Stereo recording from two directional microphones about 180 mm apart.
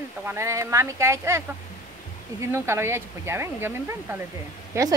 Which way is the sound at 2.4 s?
15° right (ahead or behind).